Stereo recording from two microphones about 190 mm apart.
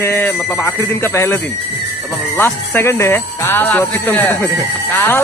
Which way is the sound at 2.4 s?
15° left (ahead or behind).